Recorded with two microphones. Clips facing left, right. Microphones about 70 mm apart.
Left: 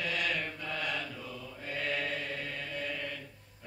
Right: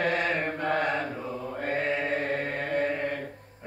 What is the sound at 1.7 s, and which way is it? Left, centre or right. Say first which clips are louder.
Mantra: right 6 dB; right.